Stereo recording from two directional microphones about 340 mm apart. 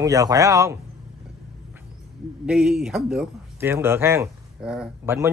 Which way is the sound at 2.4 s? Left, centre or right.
Centre.